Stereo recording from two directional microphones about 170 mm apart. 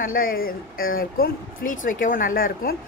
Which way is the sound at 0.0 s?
55° left (ahead or behind).